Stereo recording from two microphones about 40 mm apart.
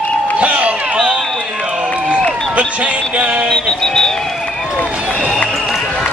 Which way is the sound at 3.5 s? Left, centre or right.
Centre.